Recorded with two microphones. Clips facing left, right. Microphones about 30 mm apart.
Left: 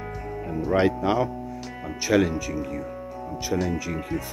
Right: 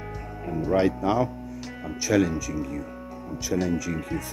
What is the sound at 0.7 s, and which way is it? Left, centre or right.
Speech, left.